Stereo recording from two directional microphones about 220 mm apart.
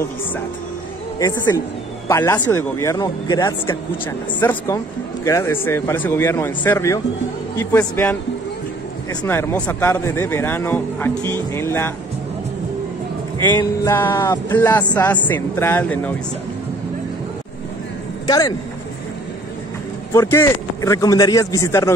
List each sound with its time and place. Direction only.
2.0 s speech: 10° left (ahead or behind)
9.2 s speech: 10° left (ahead or behind)
13.6 s speech: 10° left (ahead or behind)
18.2 s speech: 15° left (ahead or behind)
20.1 s speech: 10° left (ahead or behind)